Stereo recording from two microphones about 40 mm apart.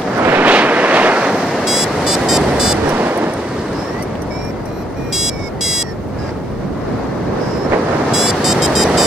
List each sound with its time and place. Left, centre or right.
0.2 s vehicle: right
0.5 s vehicle: right
1.3 s vehicle: centre
2.9 s waves: right
5.1 s music: centre
8.1 s music: centre